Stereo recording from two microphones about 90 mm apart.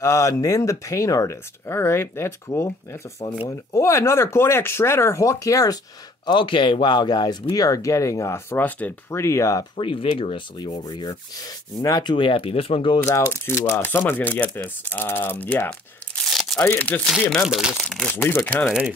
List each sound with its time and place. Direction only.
0.0 s speech: 35° left (ahead or behind)
6.2 s sanding: 65° left (ahead or behind)
7.5 s speech: 40° left (ahead or behind); by 8.9 s 20° left (ahead or behind)
9.1 s speech: 30° left (ahead or behind)
9.8 s sanding: 75° left (ahead or behind); by 12.1 s 45° left (ahead or behind)
12.1 s speech: 75° left (ahead or behind)
13.0 s speech: 30° left (ahead or behind)
16.3 s tearing: centre (ahead or behind)
16.5 s speech: 20° left (ahead or behind)
17.5 s speech: 10° right (ahead or behind)
18.0 s speech: 25° left (ahead or behind)